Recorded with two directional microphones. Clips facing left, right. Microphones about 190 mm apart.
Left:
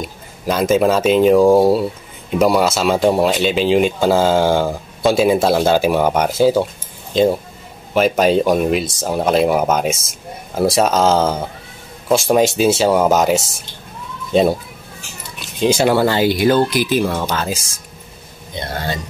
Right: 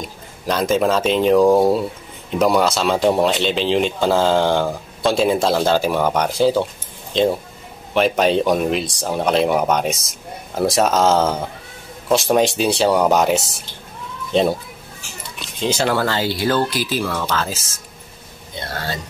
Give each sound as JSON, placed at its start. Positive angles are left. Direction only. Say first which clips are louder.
{"t": 0.0, "sound": "speech", "louder": "left 3 dB", "side_deg": 5}
{"t": 7.9, "sound": "speech", "louder": "left 2 dB", "side_deg": 5}
{"t": 15.6, "sound": "speech", "louder": "left 5 dB", "side_deg": 15}